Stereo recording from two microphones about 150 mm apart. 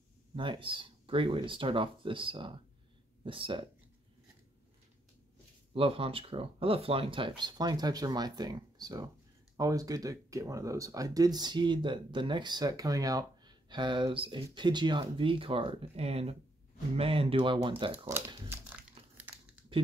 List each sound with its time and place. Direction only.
0.4 s speech: 35° right (ahead or behind)
5.7 s speech: 40° right (ahead or behind)
17.9 s crumpling: 15° right (ahead or behind)